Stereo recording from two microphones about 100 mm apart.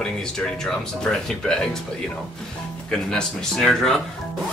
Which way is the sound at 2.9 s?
5° left (ahead or behind).